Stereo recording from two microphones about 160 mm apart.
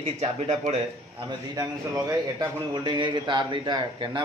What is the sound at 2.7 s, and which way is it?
A man's voice, 25° right (ahead or behind).